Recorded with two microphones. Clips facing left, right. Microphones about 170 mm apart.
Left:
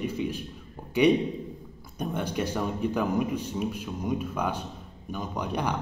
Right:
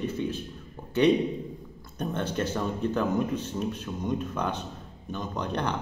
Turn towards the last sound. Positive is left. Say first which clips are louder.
# even
turn(degrees=10)  # may be behind; listen again after turning